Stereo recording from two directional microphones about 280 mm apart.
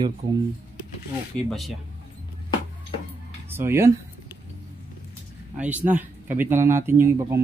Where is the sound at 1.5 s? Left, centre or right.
Centre.